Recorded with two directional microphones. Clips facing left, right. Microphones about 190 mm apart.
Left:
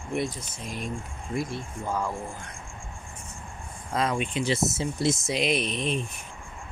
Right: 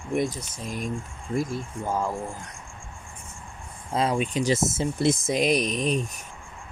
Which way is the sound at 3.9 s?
30° right (ahead or behind).